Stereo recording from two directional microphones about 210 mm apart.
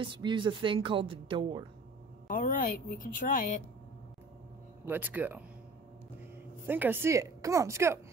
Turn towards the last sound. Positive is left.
turn(degrees=-15)  # may be behind; listen again after turning